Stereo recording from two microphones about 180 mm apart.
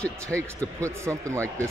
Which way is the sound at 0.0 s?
5° left (ahead or behind).